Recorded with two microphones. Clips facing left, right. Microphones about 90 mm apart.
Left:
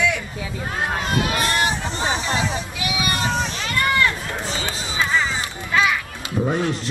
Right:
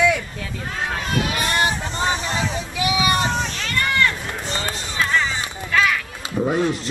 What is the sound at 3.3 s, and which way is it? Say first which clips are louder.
Run: left 1 dB; 5° left (ahead or behind).